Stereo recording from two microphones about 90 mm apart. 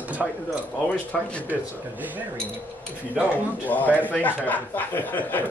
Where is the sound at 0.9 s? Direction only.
15° left (ahead or behind).